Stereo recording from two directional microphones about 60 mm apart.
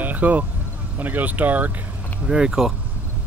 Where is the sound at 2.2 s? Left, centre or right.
Centre.